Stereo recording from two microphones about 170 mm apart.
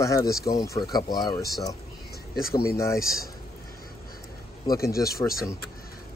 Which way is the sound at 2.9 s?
60° left (ahead or behind).